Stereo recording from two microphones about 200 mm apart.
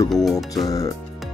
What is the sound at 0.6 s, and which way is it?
Speech, 15° left (ahead or behind).